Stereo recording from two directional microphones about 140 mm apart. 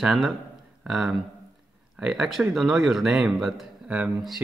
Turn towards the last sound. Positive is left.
turn(degrees=-5)  # may be behind; listen again after turning